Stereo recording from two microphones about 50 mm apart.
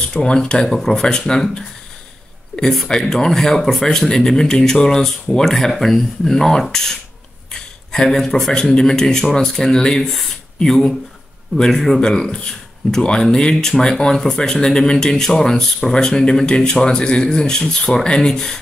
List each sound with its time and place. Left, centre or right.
0.1 s speech: centre
2.5 s speech: centre
7.5 s a sound: centre
8.7 s speech: centre